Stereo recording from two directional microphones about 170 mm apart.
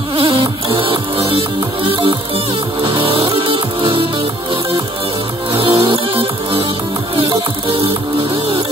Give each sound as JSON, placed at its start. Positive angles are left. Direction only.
{"t": 0.1, "sound": "music", "side_deg": -30}
{"t": 5.5, "sound": "music", "side_deg": -30}
{"t": 7.8, "sound": "music", "side_deg": -30}